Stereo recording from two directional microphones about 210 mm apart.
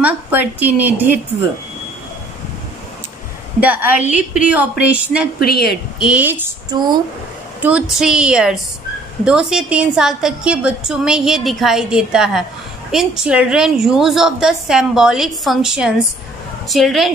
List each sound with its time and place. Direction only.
0.0 s a woman's voice: 10° right (ahead or behind)
3.6 s a woman's voice: 5° right (ahead or behind)
5.4 s a woman's voice: 50° left (ahead or behind)
5.9 s a woman's voice: 5° right (ahead or behind)
6.4 s a woman's voice: 20° right (ahead or behind)
8.0 s a woman's voice: 5° right (ahead or behind)